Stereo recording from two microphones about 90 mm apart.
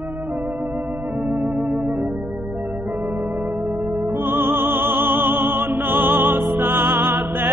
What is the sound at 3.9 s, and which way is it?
Music, 25° right (ahead or behind).